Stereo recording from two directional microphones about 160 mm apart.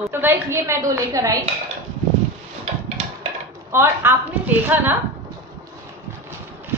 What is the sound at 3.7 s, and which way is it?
A woman's voice, 15° right (ahead or behind).